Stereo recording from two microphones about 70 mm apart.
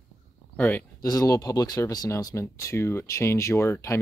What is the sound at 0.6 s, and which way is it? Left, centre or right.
Speech, left.